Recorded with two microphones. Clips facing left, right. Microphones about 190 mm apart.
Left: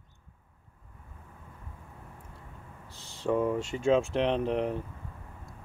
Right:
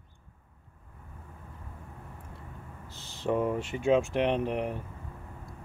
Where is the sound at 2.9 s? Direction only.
75° right (ahead or behind).